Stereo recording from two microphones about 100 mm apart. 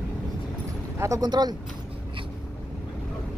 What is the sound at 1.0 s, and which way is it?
Speech, 35° right (ahead or behind).